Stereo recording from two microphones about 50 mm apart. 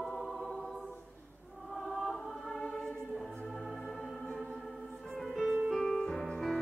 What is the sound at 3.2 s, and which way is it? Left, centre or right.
Music, centre.